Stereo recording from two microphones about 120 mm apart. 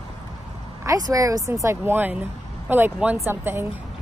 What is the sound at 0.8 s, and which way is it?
Speech, 30° right (ahead or behind).